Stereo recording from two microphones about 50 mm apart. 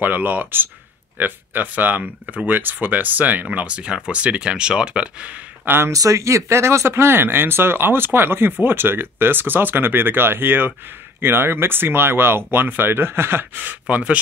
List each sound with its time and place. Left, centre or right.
0.0 s speech: right
3.4 s speech: right
5.9 s speech: right
13.6 s speech: right